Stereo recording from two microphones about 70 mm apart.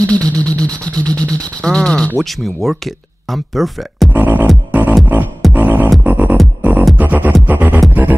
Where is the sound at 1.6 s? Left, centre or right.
Centre.